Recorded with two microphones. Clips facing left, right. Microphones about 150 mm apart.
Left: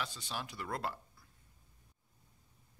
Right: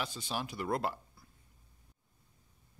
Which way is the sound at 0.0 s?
10° right (ahead or behind).